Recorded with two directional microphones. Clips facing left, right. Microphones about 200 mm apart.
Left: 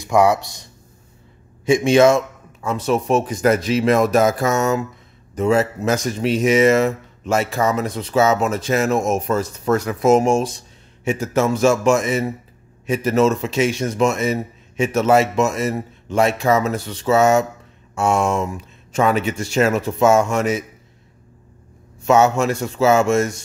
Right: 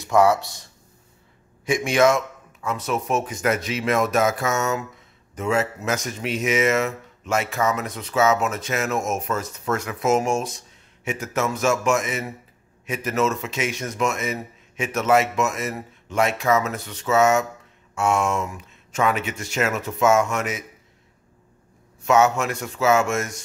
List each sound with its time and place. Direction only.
0.0 s speech: 15° left (ahead or behind)
1.7 s speech: 25° left (ahead or behind)
22.0 s speech: 30° left (ahead or behind)